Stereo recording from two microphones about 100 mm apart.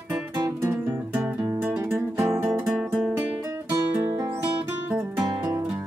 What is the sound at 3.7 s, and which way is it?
Music, 35° right (ahead or behind).